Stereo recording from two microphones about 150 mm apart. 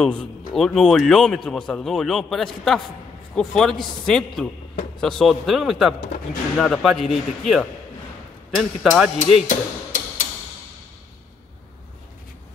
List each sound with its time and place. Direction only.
0.0 s a man's voice: 5° left (ahead or behind)
9.2 s hammer: 55° left (ahead or behind)